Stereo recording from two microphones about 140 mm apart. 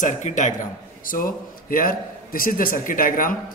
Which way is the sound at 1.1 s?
85° left.